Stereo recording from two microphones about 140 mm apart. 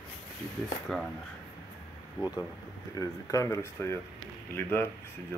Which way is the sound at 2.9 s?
25° left (ahead or behind).